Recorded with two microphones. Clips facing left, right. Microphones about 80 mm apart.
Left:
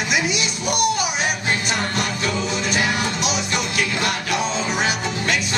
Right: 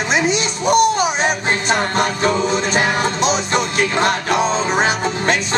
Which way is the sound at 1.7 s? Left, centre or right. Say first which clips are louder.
Right 6 dB; right.